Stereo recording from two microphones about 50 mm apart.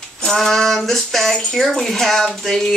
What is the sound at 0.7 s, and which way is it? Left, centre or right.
Speech, centre.